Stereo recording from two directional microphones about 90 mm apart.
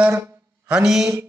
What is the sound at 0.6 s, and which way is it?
Mantra, 10° right (ahead or behind).